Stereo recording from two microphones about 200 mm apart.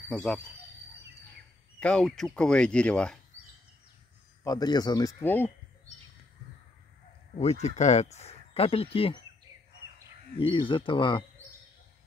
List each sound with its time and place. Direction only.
0.1 s speech: 5° left (ahead or behind)
1.8 s speech: 5° left (ahead or behind)
4.4 s speech: 20° left (ahead or behind)
7.3 s speech: 35° left (ahead or behind)
10.3 s speech: 25° left (ahead or behind)